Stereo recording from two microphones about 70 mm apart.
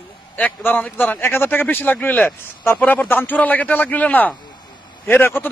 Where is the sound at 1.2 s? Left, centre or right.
Left.